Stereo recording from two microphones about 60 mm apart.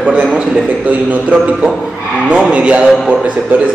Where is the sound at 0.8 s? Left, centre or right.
Right.